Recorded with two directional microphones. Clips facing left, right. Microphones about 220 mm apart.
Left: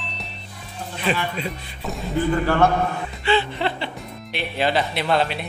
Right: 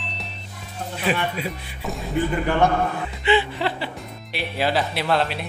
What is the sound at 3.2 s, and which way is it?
Chuckle, 15° right (ahead or behind).